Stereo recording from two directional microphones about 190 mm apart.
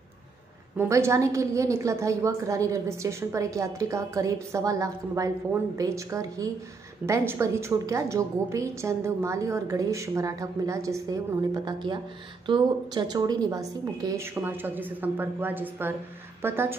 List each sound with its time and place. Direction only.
0.7 s a woman's voice: 15° right (ahead or behind)